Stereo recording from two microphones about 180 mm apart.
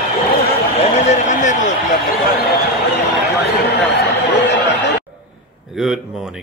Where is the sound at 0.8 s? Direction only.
40° left (ahead or behind).